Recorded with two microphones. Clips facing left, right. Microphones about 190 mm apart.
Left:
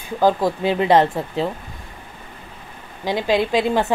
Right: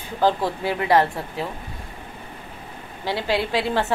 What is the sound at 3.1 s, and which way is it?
Speech, 15° left (ahead or behind).